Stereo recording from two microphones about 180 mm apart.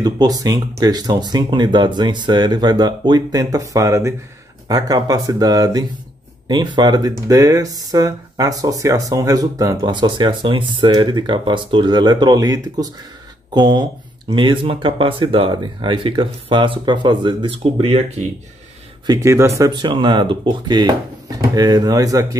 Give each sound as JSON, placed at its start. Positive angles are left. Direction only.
{"t": 0.0, "sound": "speech", "side_deg": -20}
{"t": 19.0, "sound": "speech", "side_deg": -15}